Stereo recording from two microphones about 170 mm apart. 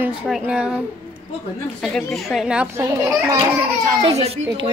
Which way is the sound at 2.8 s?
20° right (ahead or behind).